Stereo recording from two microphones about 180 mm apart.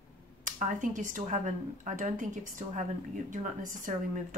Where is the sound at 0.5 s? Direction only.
45° right (ahead or behind).